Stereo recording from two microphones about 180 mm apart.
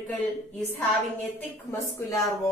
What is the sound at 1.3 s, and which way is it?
Speech, 15° left (ahead or behind).